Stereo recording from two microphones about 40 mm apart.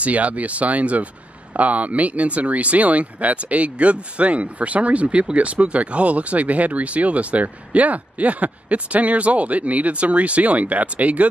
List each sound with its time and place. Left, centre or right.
0.0 s speech: right